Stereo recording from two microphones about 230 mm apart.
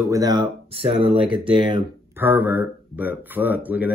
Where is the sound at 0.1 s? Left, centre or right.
Centre.